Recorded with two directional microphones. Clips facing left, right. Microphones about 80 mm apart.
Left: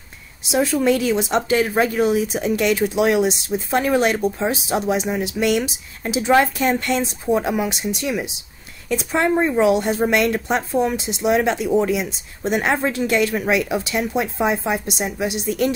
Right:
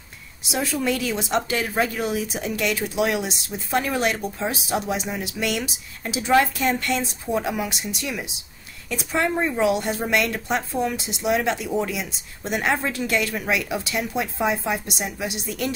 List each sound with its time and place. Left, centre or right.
0.5 s speech: left